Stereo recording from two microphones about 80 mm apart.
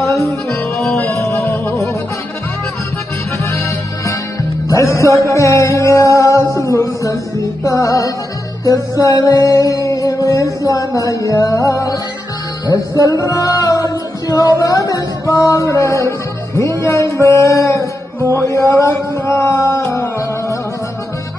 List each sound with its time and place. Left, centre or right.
0.0 s music: left
1.3 s music: left
3.4 s music: left
6.6 s a sound: left
7.6 s music: left
18.3 s a sound: left